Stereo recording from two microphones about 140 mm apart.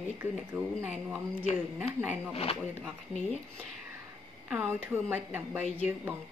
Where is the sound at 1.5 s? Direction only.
50° left (ahead or behind).